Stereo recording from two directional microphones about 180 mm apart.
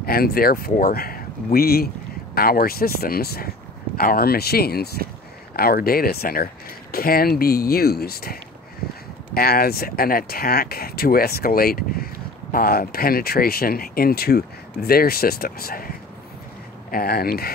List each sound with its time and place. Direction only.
0.0 s speech: 55° left (ahead or behind)
16.9 s speech: 55° left (ahead or behind)